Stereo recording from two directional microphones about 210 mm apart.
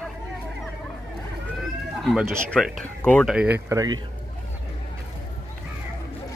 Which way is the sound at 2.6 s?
Centre (ahead or behind).